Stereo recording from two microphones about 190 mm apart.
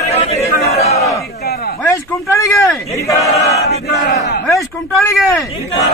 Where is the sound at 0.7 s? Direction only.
35° left (ahead or behind).